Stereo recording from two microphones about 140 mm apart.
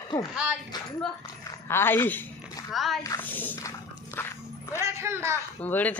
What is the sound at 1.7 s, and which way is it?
Speech, 15° left (ahead or behind).